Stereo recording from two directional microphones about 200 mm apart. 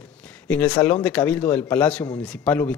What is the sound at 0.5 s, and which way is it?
A man's voice, 5° left (ahead or behind).